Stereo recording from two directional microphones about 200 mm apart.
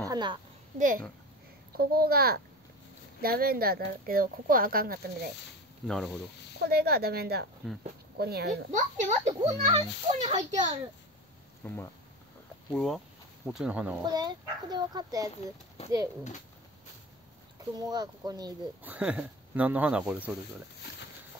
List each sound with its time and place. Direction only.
0.0 s a woman's voice: 20° right (ahead or behind)
0.7 s speech: 40° right (ahead or behind)
5.9 s speech: centre (ahead or behind)
6.6 s speech: 55° right (ahead or behind); by 10.8 s 35° right (ahead or behind)
11.6 s speech: 10° left (ahead or behind); by 13.9 s 5° right (ahead or behind)
14.0 s a child's voice: 20° right (ahead or behind)
17.7 s a child's voice: 20° right (ahead or behind)
18.9 s speech: 5° right (ahead or behind)